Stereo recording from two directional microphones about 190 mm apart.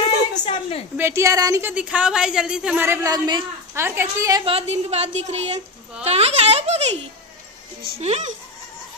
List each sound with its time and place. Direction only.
0.3 s a sound: 30° left (ahead or behind)
0.9 s a woman's voice: 15° right (ahead or behind)
4.5 s a woman's voice: 35° right (ahead or behind)
8.0 s a woman's voice: 35° right (ahead or behind)